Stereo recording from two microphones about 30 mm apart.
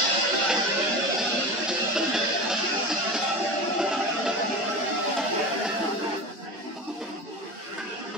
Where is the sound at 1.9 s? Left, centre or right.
Centre.